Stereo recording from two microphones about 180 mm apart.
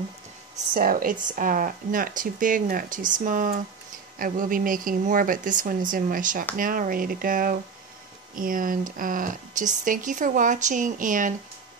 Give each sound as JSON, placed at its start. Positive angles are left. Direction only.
{"t": 0.7, "sound": "speech", "side_deg": -55}